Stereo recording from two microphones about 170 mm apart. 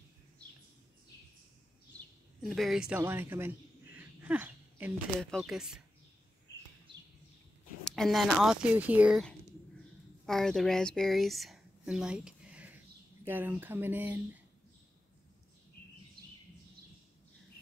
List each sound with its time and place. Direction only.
2.4 s speech: centre (ahead or behind)
3.0 s a sound: 15° right (ahead or behind)
5.2 s speech: centre (ahead or behind)
7.8 s a woman's voice: centre (ahead or behind)
16.2 s bird: 65° right (ahead or behind)